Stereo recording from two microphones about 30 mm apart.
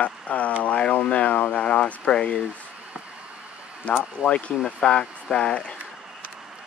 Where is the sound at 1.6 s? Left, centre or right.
Left.